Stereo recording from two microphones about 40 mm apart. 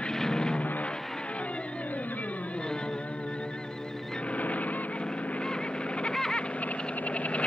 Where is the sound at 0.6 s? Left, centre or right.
Left.